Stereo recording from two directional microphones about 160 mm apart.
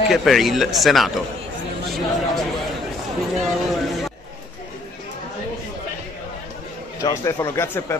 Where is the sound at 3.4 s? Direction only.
Centre (ahead or behind).